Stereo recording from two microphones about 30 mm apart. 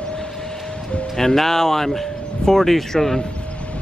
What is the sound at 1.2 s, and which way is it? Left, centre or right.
Speech, centre.